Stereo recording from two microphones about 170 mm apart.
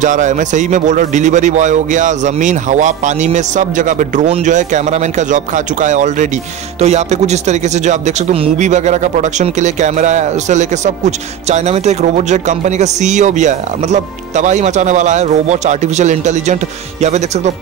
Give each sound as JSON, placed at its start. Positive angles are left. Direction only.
{"t": 0.0, "sound": "speech", "side_deg": -45}